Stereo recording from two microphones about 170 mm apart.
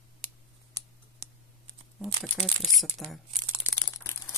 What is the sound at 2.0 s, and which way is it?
Speech, centre (ahead or behind).